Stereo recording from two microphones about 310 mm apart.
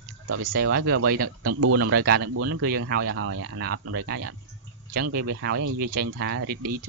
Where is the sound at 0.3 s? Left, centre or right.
Right.